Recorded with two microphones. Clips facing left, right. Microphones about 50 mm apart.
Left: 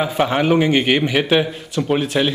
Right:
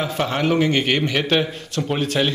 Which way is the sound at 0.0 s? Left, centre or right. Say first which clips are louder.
Left 4 dB; centre.